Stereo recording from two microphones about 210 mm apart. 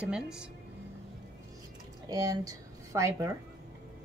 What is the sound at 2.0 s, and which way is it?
Speech, 15° right (ahead or behind).